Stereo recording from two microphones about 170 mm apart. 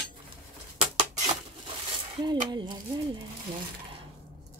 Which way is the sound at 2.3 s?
25° right (ahead or behind).